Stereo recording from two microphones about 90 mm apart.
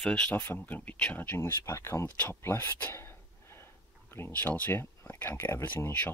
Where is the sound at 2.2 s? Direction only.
25° left (ahead or behind).